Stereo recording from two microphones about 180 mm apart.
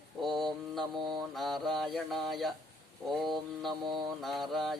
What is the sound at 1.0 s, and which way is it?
Mantra, 25° right (ahead or behind).